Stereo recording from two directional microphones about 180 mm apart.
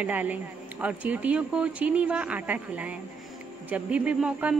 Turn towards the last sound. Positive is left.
turn(degrees=-5)  # may be behind; listen again after turning